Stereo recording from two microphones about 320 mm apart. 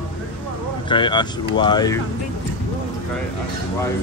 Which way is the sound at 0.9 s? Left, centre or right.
Centre.